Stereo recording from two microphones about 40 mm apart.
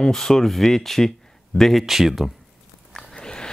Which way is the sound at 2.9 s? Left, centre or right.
Centre.